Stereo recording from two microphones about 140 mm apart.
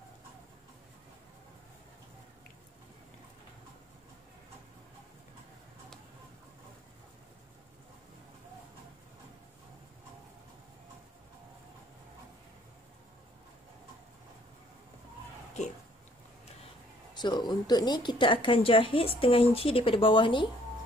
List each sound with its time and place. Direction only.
17.1 s a woman's voice: 30° left (ahead or behind)